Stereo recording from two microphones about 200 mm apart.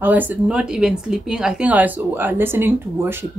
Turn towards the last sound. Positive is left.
turn(degrees=-10)  # may be behind; listen again after turning